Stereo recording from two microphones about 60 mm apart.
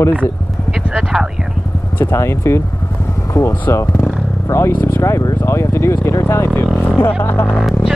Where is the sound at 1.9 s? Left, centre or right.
Left.